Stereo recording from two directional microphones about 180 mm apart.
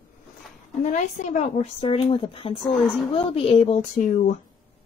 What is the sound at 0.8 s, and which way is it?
A woman's voice, 45° left (ahead or behind).